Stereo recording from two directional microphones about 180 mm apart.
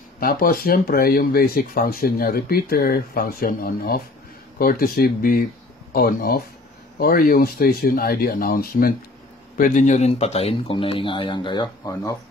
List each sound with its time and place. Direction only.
0.2 s speech: 55° left (ahead or behind); by 12.2 s 20° left (ahead or behind)